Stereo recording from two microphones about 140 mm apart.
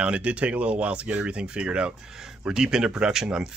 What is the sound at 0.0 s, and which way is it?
Speech, 10° right (ahead or behind).